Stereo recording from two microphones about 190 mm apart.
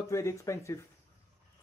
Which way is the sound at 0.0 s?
15° left (ahead or behind).